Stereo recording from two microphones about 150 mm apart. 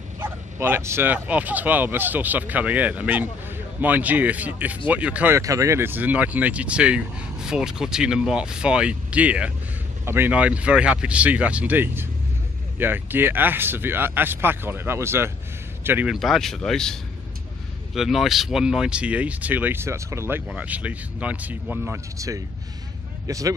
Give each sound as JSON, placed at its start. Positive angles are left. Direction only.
{"t": 0.2, "sound": "speech", "side_deg": -15}
{"t": 5.4, "sound": "speech", "side_deg": -20}
{"t": 16.1, "sound": "speech", "side_deg": 0}